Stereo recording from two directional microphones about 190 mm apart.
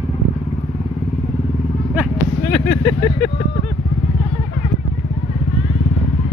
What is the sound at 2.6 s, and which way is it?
Vehicle, 10° left (ahead or behind).